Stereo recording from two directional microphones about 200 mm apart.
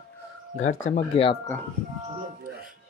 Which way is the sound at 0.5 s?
40° left (ahead or behind).